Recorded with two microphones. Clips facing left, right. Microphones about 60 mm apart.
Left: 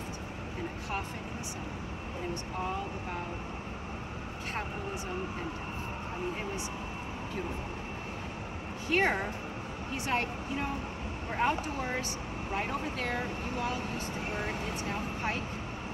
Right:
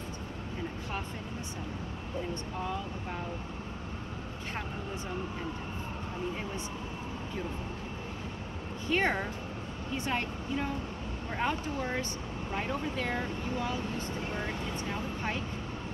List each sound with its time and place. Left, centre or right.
8.9 s speech: centre